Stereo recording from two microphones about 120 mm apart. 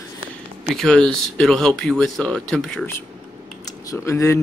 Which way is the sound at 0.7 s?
5° left (ahead or behind).